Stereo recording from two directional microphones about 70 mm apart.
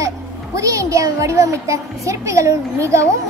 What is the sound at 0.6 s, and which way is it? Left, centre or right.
A child's voice, right.